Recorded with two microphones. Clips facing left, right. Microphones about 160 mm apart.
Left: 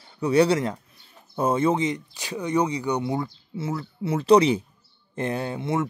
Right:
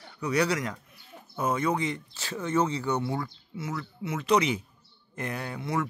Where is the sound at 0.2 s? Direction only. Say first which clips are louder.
Left 7 dB; 30° left (ahead or behind).